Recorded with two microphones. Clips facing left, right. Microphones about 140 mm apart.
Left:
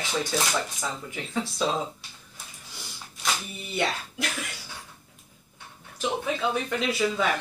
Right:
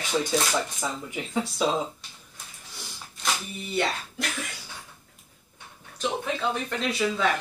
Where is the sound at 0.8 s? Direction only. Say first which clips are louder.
Right 2 dB; 15° right (ahead or behind).